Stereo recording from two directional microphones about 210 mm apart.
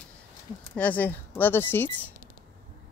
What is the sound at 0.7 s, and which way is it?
Speech, 5° left (ahead or behind).